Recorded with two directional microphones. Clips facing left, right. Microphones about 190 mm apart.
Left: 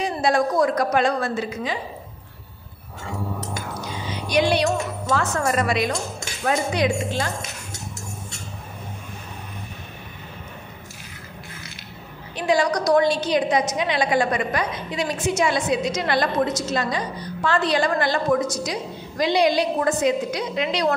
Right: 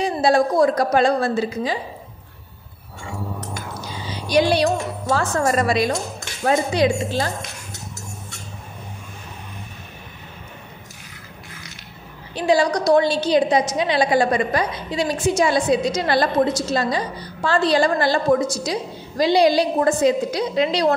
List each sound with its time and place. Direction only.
0.0 s a woman's voice: 30° right (ahead or behind)
4.0 s a woman's voice: 35° right (ahead or behind)
12.4 s a woman's voice: 30° right (ahead or behind)